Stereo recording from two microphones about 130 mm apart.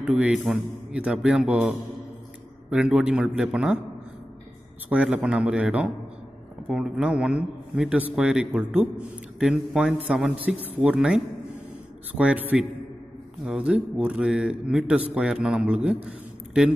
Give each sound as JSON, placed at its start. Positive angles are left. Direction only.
{"t": 0.0, "sound": "a man's voice", "side_deg": -5}
{"t": 4.8, "sound": "a man's voice", "side_deg": -10}